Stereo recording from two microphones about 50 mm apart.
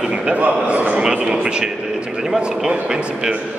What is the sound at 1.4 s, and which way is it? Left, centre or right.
A man's voice, centre.